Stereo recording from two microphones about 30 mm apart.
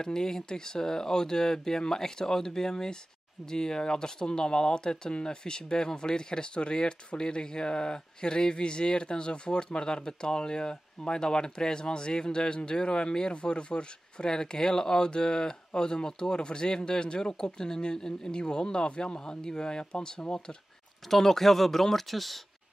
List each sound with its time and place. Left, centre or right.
0.0 s speech: left
21.1 s speech: centre